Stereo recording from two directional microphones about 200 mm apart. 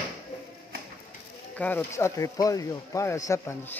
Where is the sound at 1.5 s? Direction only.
10° left (ahead or behind).